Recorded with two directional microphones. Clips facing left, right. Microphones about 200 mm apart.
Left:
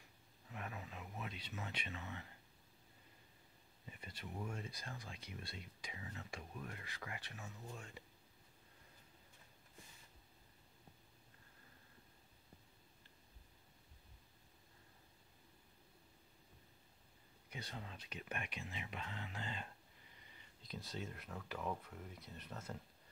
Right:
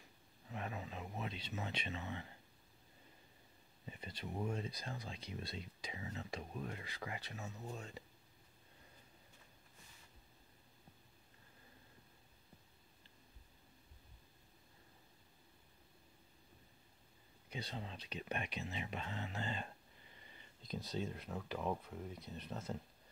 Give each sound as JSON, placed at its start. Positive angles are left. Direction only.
{"t": 0.5, "sound": "a sound", "side_deg": -25}
{"t": 3.9, "sound": "speech", "side_deg": -25}
{"t": 17.5, "sound": "speech", "side_deg": -30}
{"t": 20.9, "sound": "speech", "side_deg": -30}